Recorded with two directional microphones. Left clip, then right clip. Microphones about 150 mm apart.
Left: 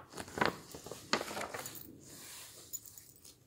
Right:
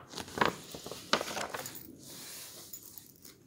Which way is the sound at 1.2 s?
15° right (ahead or behind).